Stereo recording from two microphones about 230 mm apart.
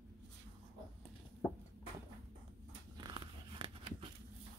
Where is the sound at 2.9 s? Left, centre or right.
Right.